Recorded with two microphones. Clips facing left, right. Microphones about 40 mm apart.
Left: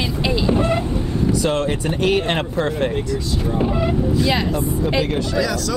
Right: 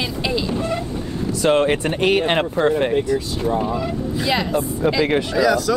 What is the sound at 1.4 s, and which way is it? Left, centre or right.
Speech, right.